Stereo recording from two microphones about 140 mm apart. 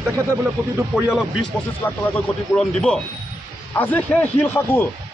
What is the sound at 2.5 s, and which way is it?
Speech, 5° left (ahead or behind).